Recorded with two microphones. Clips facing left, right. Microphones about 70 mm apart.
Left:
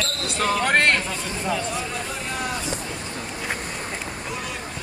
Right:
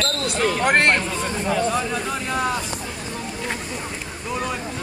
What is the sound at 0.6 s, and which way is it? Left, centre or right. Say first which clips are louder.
Speech: right 2 dB; centre.